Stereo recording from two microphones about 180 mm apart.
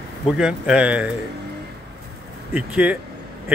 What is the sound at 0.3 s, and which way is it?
Speech, 5° right (ahead or behind).